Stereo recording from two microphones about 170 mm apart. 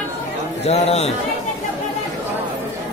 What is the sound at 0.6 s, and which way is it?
Speech, 40° left (ahead or behind).